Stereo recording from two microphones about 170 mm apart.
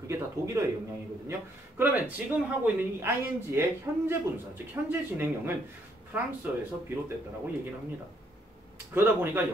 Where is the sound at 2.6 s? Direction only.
15° right (ahead or behind).